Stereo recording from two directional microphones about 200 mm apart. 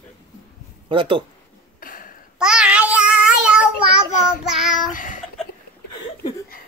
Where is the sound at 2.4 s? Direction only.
5° right (ahead or behind).